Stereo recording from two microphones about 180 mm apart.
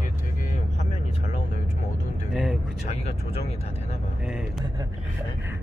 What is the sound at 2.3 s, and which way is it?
Speech, centre (ahead or behind).